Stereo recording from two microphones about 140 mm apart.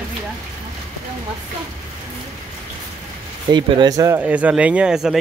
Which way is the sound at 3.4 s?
30° right (ahead or behind).